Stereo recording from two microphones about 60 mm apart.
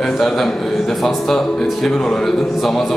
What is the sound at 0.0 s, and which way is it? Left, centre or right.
A man's voice, centre.